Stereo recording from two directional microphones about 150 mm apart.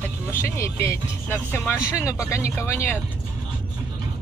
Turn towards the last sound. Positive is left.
turn(degrees=15)  # may be behind; listen again after turning